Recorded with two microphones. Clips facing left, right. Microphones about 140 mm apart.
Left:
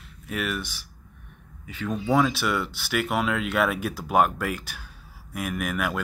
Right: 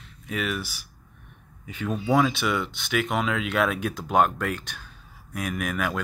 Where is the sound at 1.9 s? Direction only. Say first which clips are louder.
Even; centre (ahead or behind).